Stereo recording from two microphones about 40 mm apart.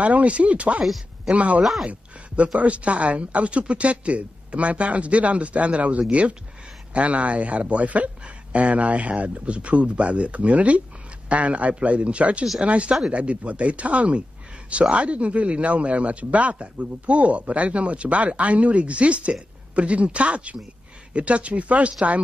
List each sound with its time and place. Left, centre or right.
0.0 s speech: right
1.6 s speech: centre
1.9 s a sound: right
2.6 s speech: right